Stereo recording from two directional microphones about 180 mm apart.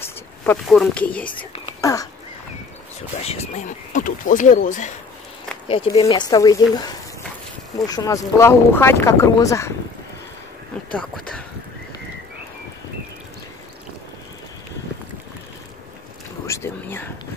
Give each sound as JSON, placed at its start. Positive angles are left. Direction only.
{"t": 0.0, "sound": "a sound", "side_deg": 10}
{"t": 0.7, "sound": "speech", "side_deg": 5}
{"t": 1.8, "sound": "a sound", "side_deg": 20}
{"t": 3.2, "sound": "speech", "side_deg": 35}
{"t": 5.7, "sound": "speech", "side_deg": 30}
{"t": 16.4, "sound": "speech", "side_deg": 15}